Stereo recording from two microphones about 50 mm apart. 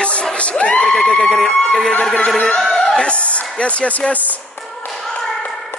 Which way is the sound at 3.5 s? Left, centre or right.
Left.